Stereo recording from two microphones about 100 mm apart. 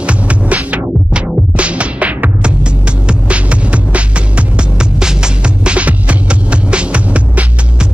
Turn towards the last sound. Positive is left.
turn(degrees=-15)  # may be behind; listen again after turning